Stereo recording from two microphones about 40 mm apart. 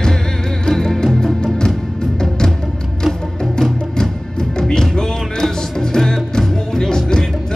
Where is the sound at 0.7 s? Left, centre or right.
Centre.